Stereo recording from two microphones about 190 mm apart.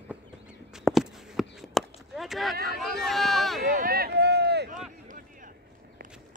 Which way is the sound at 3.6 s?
55° right (ahead or behind).